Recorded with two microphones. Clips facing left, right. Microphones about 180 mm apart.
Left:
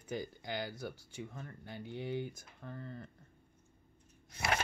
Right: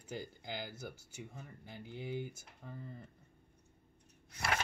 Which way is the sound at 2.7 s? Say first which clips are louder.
Left 3 dB; 75° left (ahead or behind).